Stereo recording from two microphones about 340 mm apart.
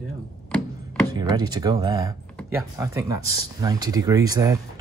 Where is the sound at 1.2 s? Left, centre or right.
Centre.